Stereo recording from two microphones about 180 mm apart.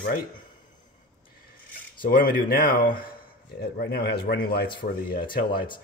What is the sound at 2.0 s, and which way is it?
Speech, 55° left (ahead or behind).